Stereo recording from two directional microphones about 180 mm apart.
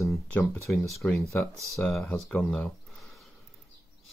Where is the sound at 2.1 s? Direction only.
5° left (ahead or behind).